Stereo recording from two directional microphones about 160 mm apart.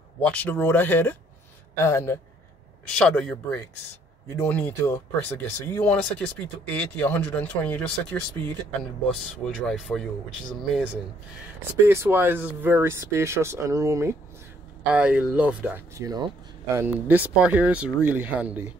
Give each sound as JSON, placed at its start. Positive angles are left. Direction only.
{"t": 0.2, "sound": "speech", "side_deg": 10}
{"t": 2.9, "sound": "speech", "side_deg": 5}
{"t": 9.1, "sound": "speech", "side_deg": 0}
{"t": 11.9, "sound": "speech", "side_deg": -15}